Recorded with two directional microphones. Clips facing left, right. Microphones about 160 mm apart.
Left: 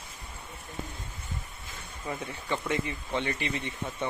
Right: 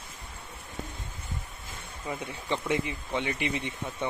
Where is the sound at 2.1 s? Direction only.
15° right (ahead or behind).